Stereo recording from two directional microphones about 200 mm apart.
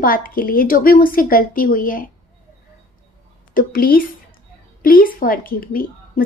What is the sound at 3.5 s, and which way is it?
Speech, 45° left (ahead or behind).